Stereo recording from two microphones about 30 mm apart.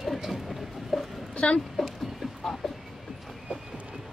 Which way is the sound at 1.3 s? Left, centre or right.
Left.